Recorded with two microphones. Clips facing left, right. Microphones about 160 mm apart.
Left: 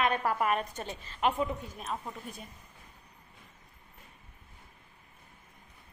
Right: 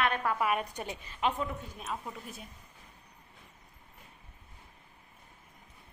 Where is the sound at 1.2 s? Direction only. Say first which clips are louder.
Left 3 dB; 10° left (ahead or behind).